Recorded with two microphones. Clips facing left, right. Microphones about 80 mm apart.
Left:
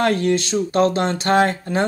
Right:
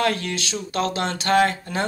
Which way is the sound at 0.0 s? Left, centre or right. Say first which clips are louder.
Left 6 dB; left.